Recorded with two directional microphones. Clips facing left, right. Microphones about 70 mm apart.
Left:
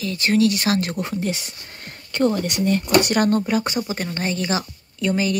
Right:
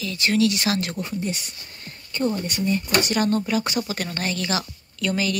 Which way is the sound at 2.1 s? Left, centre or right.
Left.